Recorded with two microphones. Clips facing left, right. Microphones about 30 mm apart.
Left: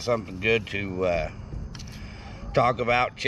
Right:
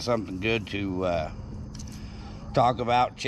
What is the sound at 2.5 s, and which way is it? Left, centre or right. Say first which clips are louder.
Speech: left 1 dB; left.